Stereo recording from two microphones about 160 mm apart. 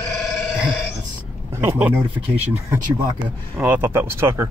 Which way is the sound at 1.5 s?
15° right (ahead or behind).